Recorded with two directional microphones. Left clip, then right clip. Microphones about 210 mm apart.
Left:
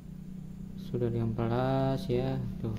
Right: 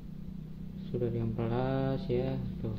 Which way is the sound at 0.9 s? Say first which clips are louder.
Left 2 dB; 20° left (ahead or behind).